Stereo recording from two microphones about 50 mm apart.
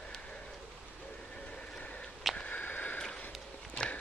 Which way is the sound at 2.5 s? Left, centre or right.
Left.